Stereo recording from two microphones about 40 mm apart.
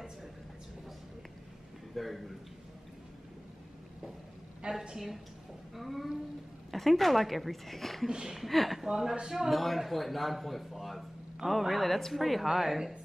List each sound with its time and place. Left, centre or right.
2.0 s a woman's voice: centre
4.9 s a woman's voice: centre
8.1 s speech: centre
8.4 s a woman's voice: centre
8.8 s a man's voice: centre
9.5 s a woman's voice: centre